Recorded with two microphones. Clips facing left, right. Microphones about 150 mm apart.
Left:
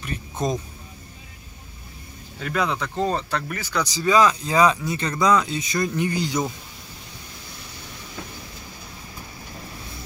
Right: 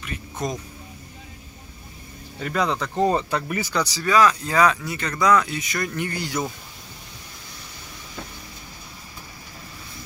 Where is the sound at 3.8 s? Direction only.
20° left (ahead or behind).